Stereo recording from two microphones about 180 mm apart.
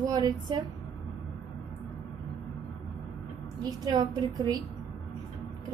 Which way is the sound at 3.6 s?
20° right (ahead or behind).